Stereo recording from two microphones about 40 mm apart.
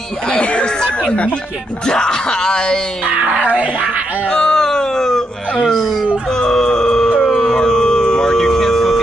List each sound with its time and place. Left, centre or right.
0.3 s speech: left
1.9 s speech: centre
3.1 s speech: right
4.3 s speech: centre
6.3 s music: centre
7.2 s a sound: centre